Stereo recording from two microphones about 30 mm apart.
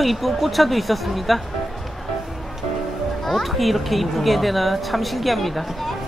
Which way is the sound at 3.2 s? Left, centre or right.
Centre.